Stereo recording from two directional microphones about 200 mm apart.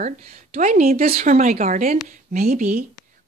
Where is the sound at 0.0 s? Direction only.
35° right (ahead or behind).